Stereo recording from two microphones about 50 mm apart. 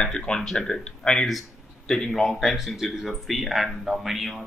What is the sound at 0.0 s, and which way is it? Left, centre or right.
Speech, centre.